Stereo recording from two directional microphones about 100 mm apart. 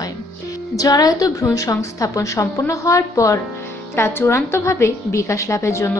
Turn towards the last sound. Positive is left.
turn(degrees=30)  # may be behind; listen again after turning